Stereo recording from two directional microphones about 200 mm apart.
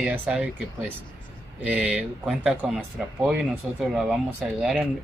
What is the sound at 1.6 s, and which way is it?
Speech, 5° right (ahead or behind).